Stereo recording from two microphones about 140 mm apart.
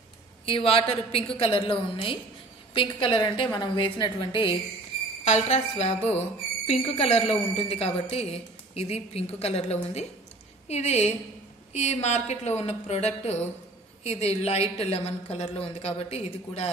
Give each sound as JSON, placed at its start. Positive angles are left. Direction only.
{"t": 0.5, "sound": "a woman's voice", "side_deg": 40}
{"t": 5.2, "sound": "a woman's voice", "side_deg": 55}